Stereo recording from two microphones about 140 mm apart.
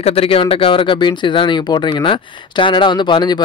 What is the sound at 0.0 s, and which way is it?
Speech, 45° left (ahead or behind).